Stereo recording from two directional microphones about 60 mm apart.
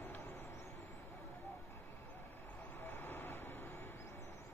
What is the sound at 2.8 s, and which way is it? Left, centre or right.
Vehicle, left.